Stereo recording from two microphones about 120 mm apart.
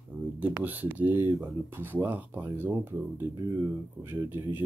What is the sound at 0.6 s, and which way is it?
Speech, 15° right (ahead or behind).